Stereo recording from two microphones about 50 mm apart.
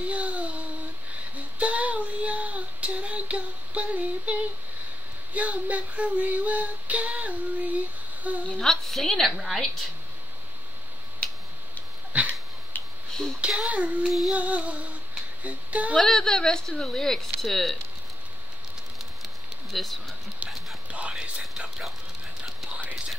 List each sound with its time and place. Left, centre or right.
0.0 s a sound: right
1.3 s child singing: right
5.3 s female singing: right
8.5 s a woman's voice: centre
12.1 s dog: right
12.7 s tick: left
13.4 s a child's voice: right
16.0 s speech: centre
19.2 s a sound: centre
20.9 s whispering: right